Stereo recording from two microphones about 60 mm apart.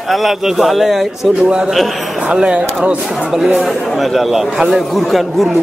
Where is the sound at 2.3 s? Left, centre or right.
Centre.